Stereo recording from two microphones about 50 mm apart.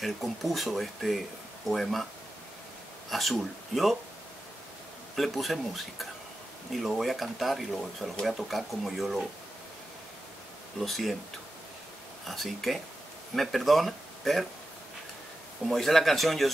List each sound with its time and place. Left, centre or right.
0.0 s speech: centre
3.1 s speech: centre
5.1 s speech: centre
10.8 s speech: centre
12.3 s speech: centre
15.6 s speech: centre